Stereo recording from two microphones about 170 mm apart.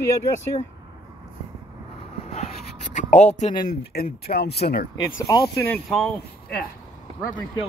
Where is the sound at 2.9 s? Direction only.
45° left (ahead or behind).